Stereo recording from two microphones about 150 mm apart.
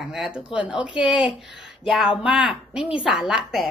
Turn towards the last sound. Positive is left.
turn(degrees=0)  # may be behind; listen again after turning